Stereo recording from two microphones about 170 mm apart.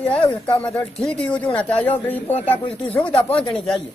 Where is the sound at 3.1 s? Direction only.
30° left (ahead or behind).